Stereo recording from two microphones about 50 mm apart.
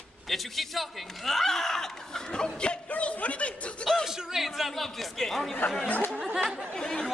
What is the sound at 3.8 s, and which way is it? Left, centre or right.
Music, centre.